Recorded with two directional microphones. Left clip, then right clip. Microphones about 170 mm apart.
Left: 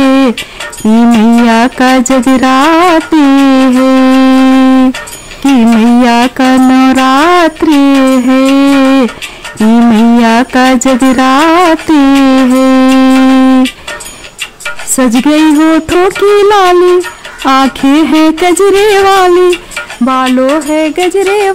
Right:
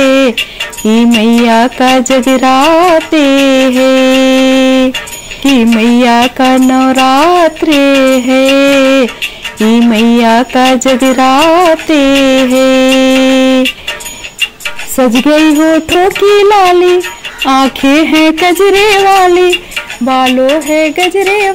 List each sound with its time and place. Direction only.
0.0 s music: 15° left (ahead or behind)
0.8 s speech: 20° left (ahead or behind)
15.1 s speech: 20° left (ahead or behind)